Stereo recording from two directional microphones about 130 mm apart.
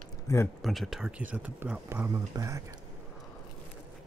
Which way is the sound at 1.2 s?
10° right (ahead or behind).